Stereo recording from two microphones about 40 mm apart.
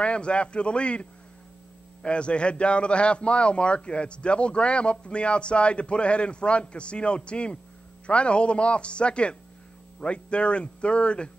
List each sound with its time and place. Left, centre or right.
0.0 s a man's voice: left
2.0 s a man's voice: left